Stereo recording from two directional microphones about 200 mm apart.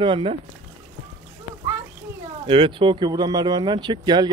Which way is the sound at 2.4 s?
25° right (ahead or behind).